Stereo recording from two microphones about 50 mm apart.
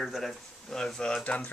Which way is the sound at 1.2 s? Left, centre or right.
Left.